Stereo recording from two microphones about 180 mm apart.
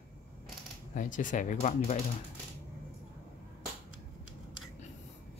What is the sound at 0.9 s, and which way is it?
Speech, 45° left (ahead or behind).